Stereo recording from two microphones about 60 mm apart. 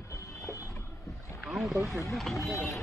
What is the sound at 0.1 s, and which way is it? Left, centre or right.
Vehicle, left.